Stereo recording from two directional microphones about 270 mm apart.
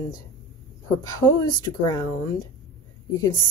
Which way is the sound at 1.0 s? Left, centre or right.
Centre.